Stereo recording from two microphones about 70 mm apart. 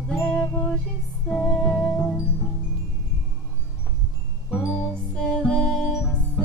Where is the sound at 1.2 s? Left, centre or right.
Centre.